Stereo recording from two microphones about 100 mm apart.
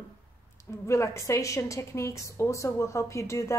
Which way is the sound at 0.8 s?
30° left (ahead or behind).